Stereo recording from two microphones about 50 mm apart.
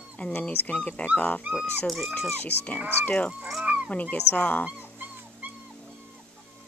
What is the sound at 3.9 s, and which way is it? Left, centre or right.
Speech, left.